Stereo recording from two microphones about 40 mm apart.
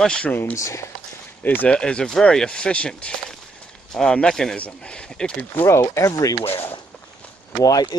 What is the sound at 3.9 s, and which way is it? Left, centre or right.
Speech, centre.